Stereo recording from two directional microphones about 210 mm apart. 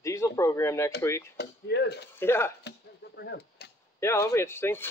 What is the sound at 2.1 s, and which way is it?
Speech, 10° left (ahead or behind).